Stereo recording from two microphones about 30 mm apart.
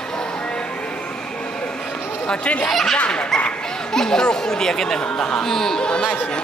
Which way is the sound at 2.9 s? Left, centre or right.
Left.